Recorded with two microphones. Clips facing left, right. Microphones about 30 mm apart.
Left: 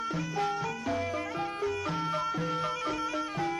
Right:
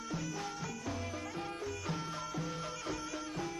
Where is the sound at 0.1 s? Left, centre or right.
Left.